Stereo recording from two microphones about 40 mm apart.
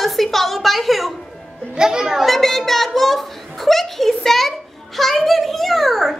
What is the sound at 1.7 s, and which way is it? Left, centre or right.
Speech, centre.